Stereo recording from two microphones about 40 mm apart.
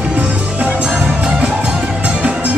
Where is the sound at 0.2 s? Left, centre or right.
Right.